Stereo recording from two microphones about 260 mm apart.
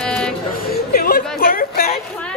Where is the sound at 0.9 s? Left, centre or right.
Left.